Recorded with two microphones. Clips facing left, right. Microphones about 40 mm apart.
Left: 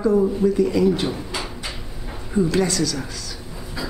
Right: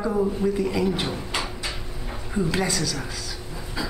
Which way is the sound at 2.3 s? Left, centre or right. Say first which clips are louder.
Left 5 dB; centre.